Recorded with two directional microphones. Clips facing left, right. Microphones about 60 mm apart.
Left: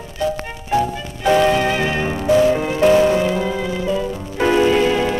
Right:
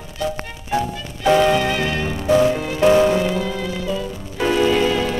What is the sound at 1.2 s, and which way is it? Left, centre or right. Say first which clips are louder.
Music: left 1 dB; centre.